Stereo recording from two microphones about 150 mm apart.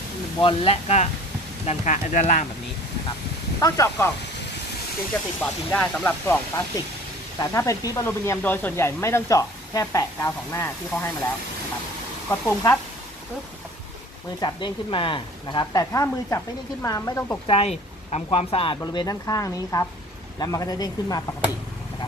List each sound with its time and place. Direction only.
0.4 s speech: 40° left (ahead or behind)
1.7 s speech: 55° left (ahead or behind)
3.5 s speech: 20° left (ahead or behind)
5.7 s speech: 10° left (ahead or behind)
7.3 s speech: 20° left (ahead or behind)
12.3 s speech: 15° left (ahead or behind)
14.4 s speech: 35° left (ahead or behind)
17.5 s speech: 45° left (ahead or behind)
18.9 s speech: 25° left (ahead or behind)